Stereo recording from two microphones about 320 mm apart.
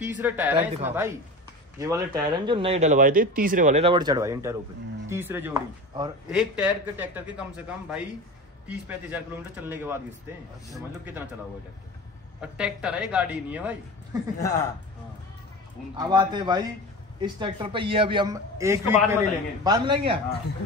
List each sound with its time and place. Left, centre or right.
0.0 s a man's voice: centre
12.4 s speech: centre
16.0 s a man's voice: centre